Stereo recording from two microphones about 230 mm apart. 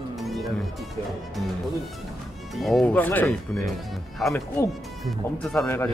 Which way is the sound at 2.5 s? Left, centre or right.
Centre.